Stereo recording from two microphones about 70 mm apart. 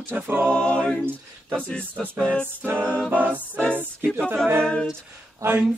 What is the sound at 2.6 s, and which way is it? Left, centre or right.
A capella, right.